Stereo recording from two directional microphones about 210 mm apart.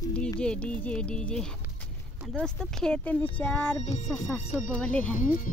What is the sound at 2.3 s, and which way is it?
Speech, 5° left (ahead or behind).